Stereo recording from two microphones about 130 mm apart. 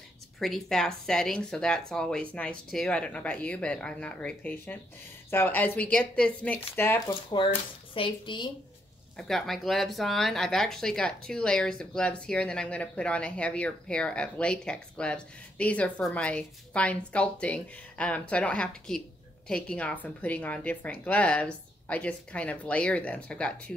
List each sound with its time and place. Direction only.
0.4 s speech: centre (ahead or behind)
7.9 s speech: 40° left (ahead or behind)
9.1 s speech: centre (ahead or behind)